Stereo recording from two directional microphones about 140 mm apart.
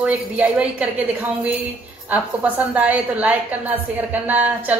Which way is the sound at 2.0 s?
10° right (ahead or behind).